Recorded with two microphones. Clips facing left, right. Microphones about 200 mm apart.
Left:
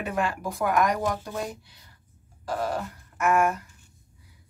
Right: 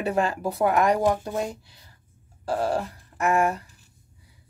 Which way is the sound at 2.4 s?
30° right (ahead or behind).